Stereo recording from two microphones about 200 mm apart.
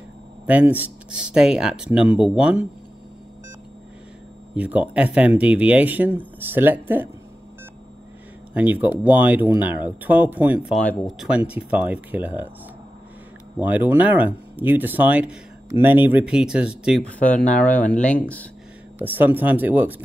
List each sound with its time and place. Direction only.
0.5 s speech: 5° right (ahead or behind)
4.6 s speech: 5° right (ahead or behind)
8.5 s speech: 10° right (ahead or behind)
13.6 s speech: 10° right (ahead or behind)
17.2 s speech: 5° left (ahead or behind)
19.1 s speech: 10° right (ahead or behind)